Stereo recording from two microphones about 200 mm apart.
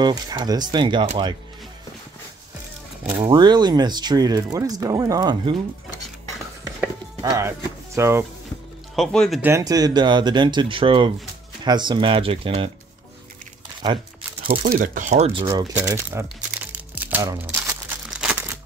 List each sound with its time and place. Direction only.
0.0 s speech: 20° right (ahead or behind)
3.2 s speech: 25° right (ahead or behind)
7.2 s speech: 15° right (ahead or behind)
8.9 s speech: centre (ahead or behind)
9.4 s speech: 15° right (ahead or behind)
14.7 s speech: 40° right (ahead or behind)
15.4 s speech: 20° right (ahead or behind)
15.9 s crumpling: 10° right (ahead or behind)